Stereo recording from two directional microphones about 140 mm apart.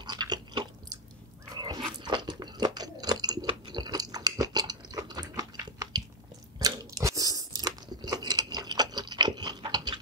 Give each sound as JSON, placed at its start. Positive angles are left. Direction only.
{"t": 0.0, "sound": "chewing", "side_deg": -30}
{"t": 1.5, "sound": "dog", "side_deg": -25}
{"t": 1.8, "sound": "biting", "side_deg": -30}
{"t": 6.6, "sound": "crunch", "side_deg": -25}